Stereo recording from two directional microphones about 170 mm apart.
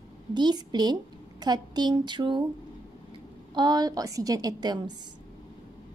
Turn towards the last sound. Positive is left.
turn(degrees=-20)  # may be behind; listen again after turning